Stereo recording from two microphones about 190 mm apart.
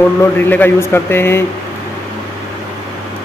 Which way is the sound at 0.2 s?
10° left (ahead or behind).